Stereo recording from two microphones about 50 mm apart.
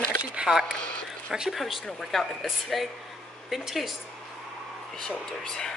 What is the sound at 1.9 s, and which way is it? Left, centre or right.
Speech, centre.